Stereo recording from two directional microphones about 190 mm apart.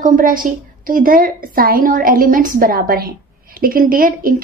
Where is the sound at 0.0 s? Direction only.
45° right (ahead or behind).